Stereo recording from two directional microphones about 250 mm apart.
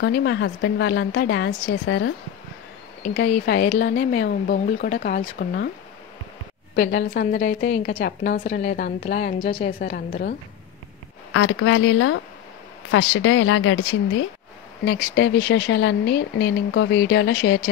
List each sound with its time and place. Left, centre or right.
0.0 s speech: left
6.7 s speech: left
7.4 s a woman's voice: left
9.8 s speech: left
11.3 s speech: left